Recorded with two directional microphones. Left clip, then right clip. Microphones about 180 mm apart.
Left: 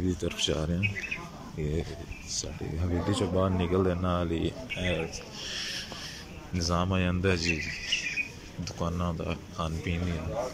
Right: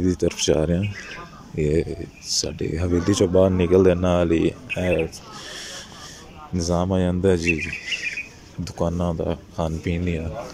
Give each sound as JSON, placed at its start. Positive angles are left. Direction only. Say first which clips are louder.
{"t": 0.0, "sound": "speech", "louder": "right 8 dB", "side_deg": -50}